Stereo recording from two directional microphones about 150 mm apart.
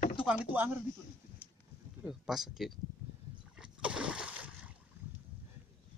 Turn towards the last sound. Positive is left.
turn(degrees=-5)  # may be behind; listen again after turning